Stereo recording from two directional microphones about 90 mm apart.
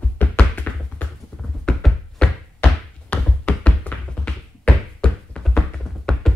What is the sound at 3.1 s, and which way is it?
Music, 15° left (ahead or behind).